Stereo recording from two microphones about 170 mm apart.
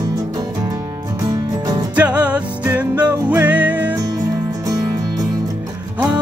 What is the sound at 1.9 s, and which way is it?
Music, 10° right (ahead or behind).